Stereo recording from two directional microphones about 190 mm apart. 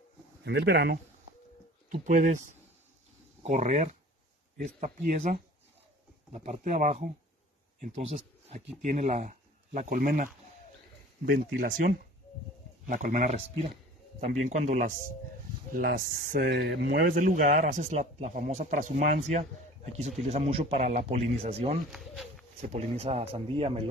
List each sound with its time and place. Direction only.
0.4 s speech: 60° right (ahead or behind)
1.9 s speech: 40° right (ahead or behind)
3.4 s speech: 35° right (ahead or behind)
15.7 s speech: 50° right (ahead or behind); by 23.9 s 30° right (ahead or behind)